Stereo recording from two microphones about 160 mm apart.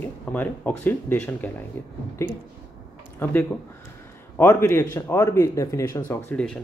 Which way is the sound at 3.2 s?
10° left (ahead or behind).